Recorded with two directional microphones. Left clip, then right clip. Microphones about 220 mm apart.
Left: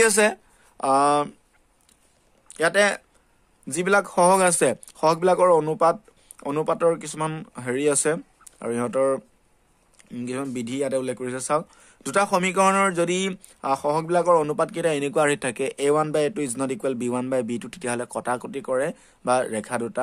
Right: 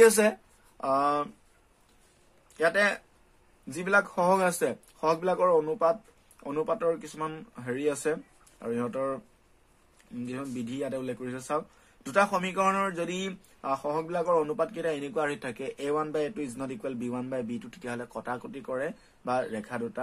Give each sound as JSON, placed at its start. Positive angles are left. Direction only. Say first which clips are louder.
{"t": 0.0, "sound": "speech", "louder": "left 1 dB", "side_deg": 40}
{"t": 2.5, "sound": "speech", "louder": "left 5 dB", "side_deg": 45}